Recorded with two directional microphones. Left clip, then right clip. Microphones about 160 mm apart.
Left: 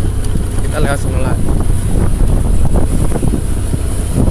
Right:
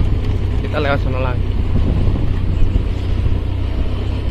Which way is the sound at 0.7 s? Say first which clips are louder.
Even; 25° left (ahead or behind).